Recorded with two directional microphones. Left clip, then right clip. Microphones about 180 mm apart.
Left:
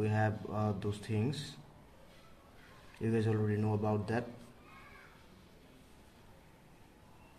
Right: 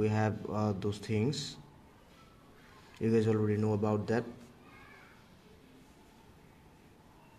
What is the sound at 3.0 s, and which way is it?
A man's voice, 25° right (ahead or behind).